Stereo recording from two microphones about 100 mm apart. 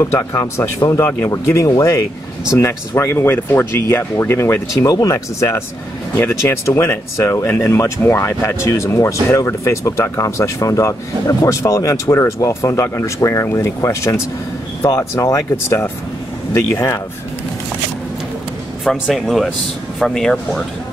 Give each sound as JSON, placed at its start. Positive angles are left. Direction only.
{"t": 0.0, "sound": "speech", "side_deg": 30}
{"t": 18.9, "sound": "speech", "side_deg": 0}